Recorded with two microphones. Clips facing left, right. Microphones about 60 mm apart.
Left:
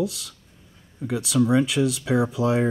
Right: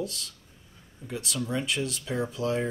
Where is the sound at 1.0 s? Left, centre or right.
Left.